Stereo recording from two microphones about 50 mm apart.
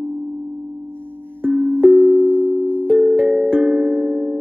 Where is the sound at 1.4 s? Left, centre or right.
Right.